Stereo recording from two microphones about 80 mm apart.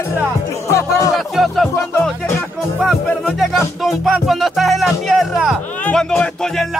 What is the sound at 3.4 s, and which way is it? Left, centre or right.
Speech, centre.